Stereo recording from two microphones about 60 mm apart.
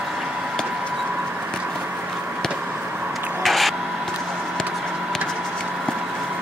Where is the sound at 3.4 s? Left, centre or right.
Centre.